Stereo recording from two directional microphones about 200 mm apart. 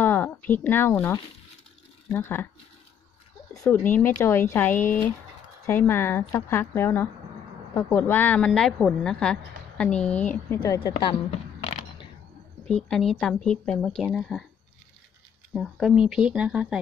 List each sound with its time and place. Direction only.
0.0 s speech: 10° left (ahead or behind)
3.5 s a woman's voice: 15° left (ahead or behind)
10.6 s a sound: 25° left (ahead or behind)
12.6 s a woman's voice: 5° left (ahead or behind)
15.5 s a woman's voice: centre (ahead or behind)